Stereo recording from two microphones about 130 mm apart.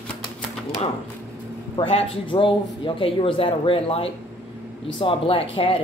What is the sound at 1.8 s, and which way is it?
A man's voice, 45° left (ahead or behind).